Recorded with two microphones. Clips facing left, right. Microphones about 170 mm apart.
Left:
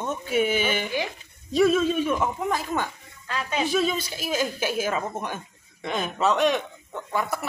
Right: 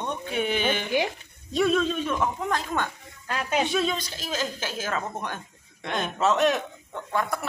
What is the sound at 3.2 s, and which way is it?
Speech, 45° right (ahead or behind).